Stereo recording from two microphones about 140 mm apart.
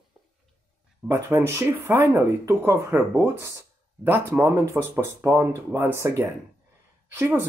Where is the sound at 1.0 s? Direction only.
20° right (ahead or behind).